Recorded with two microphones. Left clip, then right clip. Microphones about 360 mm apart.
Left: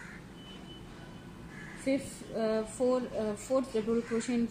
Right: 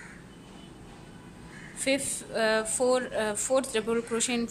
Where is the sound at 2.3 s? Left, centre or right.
Right.